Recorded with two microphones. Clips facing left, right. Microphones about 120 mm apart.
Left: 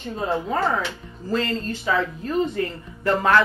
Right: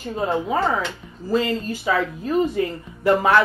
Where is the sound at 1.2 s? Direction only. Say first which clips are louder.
Right 3 dB; 10° right (ahead or behind).